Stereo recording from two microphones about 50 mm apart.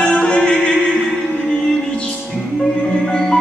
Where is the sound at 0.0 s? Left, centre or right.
Centre.